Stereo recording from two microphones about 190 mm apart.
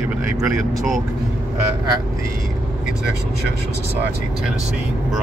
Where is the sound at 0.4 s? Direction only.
Centre (ahead or behind).